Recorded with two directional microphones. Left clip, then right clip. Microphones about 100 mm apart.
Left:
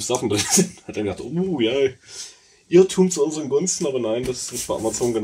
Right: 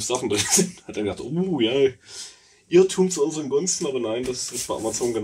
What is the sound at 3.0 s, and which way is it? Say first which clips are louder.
A man's voice: left 2 dB; 40° left (ahead or behind).